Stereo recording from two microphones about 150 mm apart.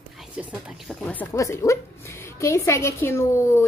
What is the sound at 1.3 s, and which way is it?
A woman's voice, 20° left (ahead or behind).